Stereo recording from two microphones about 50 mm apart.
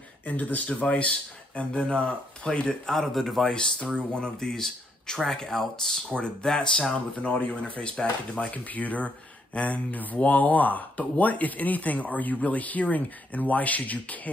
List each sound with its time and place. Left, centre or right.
0.2 s speech: left
2.9 s a man's voice: centre
3.5 s speech: centre
7.2 s speech: left